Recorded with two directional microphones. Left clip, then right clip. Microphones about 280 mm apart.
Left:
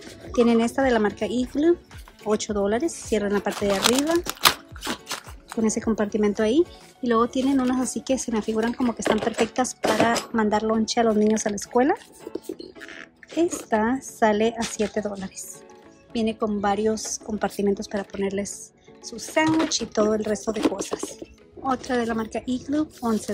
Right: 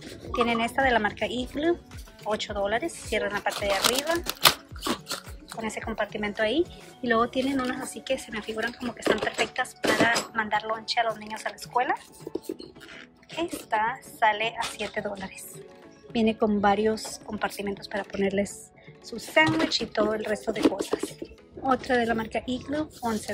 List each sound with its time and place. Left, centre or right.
0.4 s speech: centre
3.9 s speech: centre
5.6 s speech: centre
13.4 s speech: centre